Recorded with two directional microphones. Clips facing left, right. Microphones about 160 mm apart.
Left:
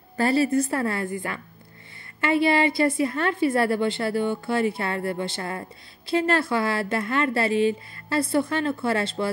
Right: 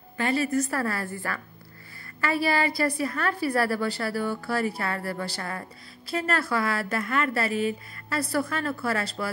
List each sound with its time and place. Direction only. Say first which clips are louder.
0.2 s a woman's voice: left 4 dB; 30° left (ahead or behind)